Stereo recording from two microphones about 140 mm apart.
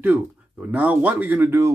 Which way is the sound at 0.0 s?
10° right (ahead or behind).